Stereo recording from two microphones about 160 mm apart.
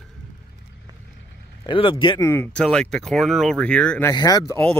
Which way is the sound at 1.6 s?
35° left (ahead or behind).